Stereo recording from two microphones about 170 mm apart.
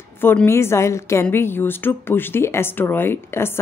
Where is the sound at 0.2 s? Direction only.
10° left (ahead or behind).